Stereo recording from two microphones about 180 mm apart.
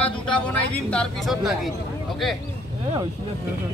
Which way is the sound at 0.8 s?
5° left (ahead or behind).